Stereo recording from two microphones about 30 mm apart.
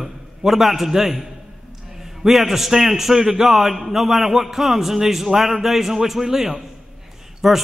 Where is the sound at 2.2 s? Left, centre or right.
Centre.